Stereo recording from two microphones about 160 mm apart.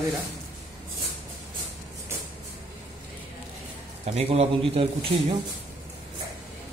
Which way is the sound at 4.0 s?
40° right (ahead or behind).